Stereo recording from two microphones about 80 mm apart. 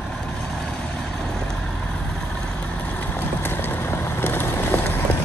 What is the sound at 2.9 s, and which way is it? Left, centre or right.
Vehicle, left.